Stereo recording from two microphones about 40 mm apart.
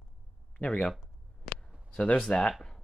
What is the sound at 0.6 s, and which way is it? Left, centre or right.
Speech, left.